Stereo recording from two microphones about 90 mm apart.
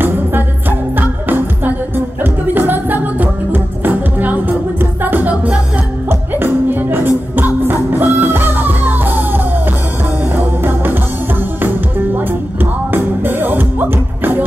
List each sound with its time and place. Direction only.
0.0 s music: 25° right (ahead or behind)
12.2 s music: 25° right (ahead or behind)